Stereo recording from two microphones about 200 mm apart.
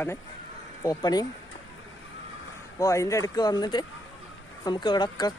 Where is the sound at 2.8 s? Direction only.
15° left (ahead or behind).